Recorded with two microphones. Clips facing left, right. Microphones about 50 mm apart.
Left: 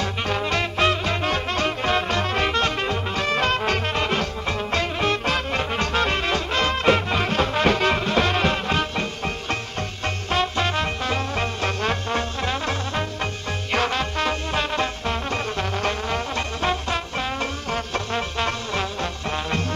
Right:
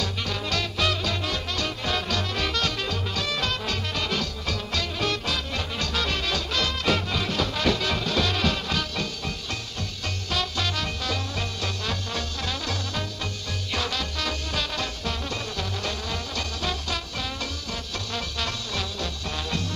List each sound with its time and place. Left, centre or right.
0.0 s swing music: left
10.0 s music: left